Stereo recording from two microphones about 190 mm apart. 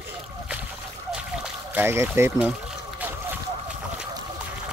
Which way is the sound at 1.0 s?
5° right (ahead or behind).